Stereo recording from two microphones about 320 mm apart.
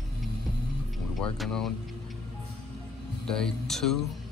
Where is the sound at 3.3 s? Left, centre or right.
Centre.